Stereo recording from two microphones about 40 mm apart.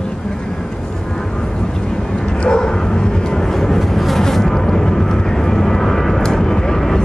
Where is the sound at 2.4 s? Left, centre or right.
Left.